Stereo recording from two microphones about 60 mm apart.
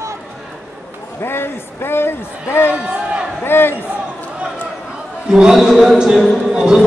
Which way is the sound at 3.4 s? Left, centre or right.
Left.